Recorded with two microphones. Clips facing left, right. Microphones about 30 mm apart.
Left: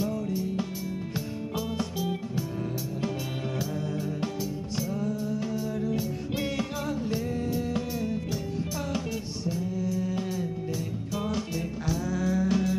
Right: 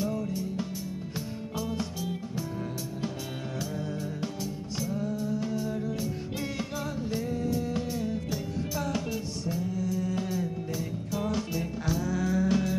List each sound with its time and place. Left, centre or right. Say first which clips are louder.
6.6 s music: left 3 dB; centre
10.1 s music: even; centre